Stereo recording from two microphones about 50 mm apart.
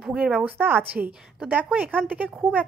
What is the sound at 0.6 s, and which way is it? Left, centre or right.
Speech, right.